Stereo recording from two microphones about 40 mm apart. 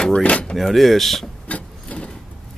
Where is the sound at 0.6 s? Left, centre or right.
Centre.